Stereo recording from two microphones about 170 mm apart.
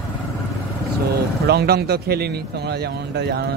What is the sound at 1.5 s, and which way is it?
A man's voice, 70° right (ahead or behind).